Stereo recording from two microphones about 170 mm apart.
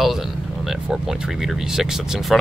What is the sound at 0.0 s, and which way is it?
Speech, centre (ahead or behind).